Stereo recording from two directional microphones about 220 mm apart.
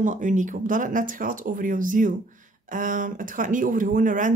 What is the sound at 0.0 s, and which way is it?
Speech, 35° right (ahead or behind).